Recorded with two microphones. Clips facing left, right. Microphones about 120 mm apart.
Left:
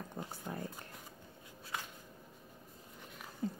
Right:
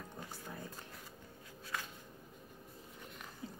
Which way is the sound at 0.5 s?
55° left (ahead or behind).